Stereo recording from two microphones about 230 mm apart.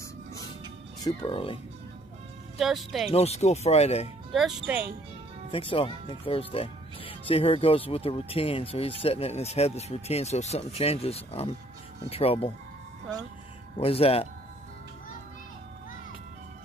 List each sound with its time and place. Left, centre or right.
1.0 s speech: left
2.6 s speech: centre
3.1 s speech: left
4.3 s speech: centre
5.5 s speech: left
13.7 s speech: left